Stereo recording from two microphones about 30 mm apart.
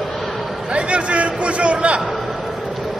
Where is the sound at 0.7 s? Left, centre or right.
Right.